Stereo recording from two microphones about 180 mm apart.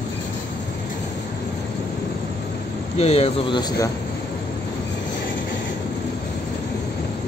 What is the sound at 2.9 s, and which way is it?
Speech, 35° left (ahead or behind).